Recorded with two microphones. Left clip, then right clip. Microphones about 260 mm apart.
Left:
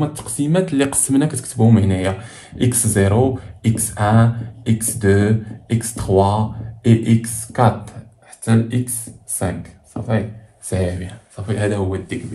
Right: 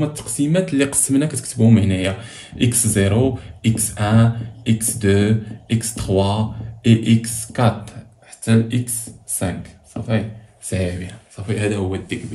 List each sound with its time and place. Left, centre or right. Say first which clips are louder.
0.0 s speech: right 1 dB; centre
0.7 s speech: left 1 dB; centre
1.3 s speech: even; centre